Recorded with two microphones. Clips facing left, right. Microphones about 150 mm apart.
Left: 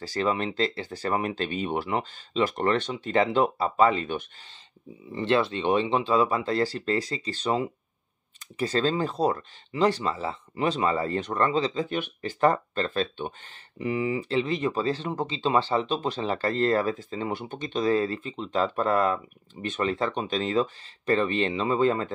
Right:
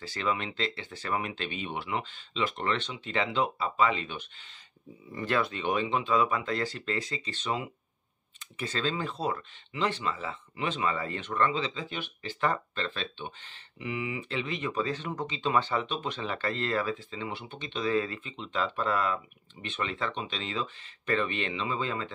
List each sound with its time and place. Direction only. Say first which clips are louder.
0.0 s speech: left 5 dB; 40° left (ahead or behind)
5.1 s speech: left 5 dB; 25° left (ahead or behind); by 22.1 s 45° left (ahead or behind)